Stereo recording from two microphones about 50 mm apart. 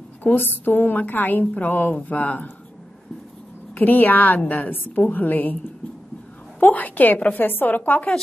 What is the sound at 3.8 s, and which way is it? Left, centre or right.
A woman's voice, left.